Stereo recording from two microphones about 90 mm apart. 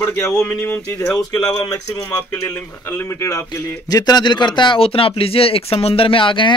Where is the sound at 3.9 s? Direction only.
50° left (ahead or behind); by 6.5 s 65° left (ahead or behind).